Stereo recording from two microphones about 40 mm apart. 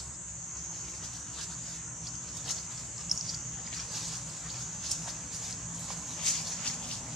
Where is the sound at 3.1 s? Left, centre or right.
Centre.